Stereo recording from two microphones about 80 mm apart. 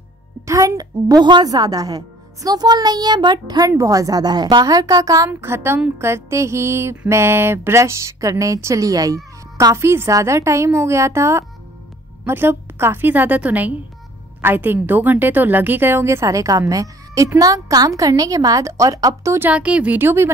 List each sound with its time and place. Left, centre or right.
0.5 s a woman's voice: right
3.7 s a woman's voice: right
5.3 s a woman's voice: right
9.8 s a woman's voice: right
19.5 s speech: centre
20.0 s a woman's voice: right